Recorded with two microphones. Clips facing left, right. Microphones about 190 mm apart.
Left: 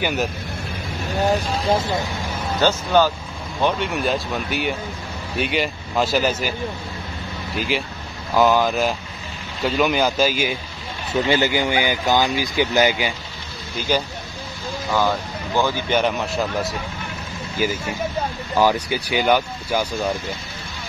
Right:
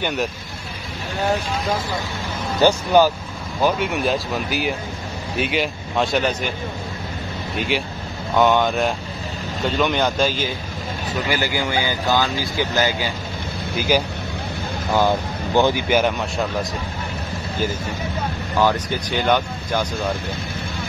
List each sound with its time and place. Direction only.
0.0 s speech: centre (ahead or behind)
1.5 s speech: 25° left (ahead or behind)
2.6 s speech: 15° right (ahead or behind)
3.6 s speech: centre (ahead or behind)
7.5 s speech: centre (ahead or behind)
11.2 s speech: 20° left (ahead or behind)
13.7 s speech: 10° right (ahead or behind)
15.9 s speech: centre (ahead or behind)
18.6 s speech: 10° left (ahead or behind)